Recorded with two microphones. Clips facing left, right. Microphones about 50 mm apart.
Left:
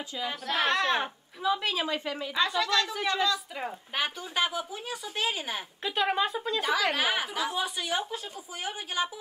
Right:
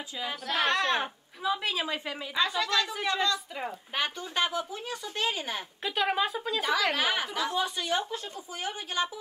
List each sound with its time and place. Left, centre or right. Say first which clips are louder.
0.2 s a woman's voice: even; centre
1.9 s a woman's voice: left 2 dB; right
2.3 s a woman's voice: left 1 dB; centre